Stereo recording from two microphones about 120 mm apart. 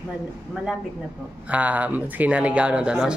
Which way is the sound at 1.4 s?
10° right (ahead or behind).